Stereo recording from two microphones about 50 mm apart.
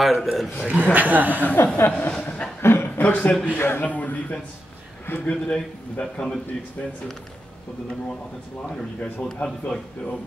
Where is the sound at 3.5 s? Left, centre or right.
Left.